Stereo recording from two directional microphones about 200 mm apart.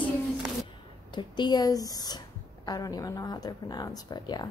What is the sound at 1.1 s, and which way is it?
A woman's voice, 20° left (ahead or behind).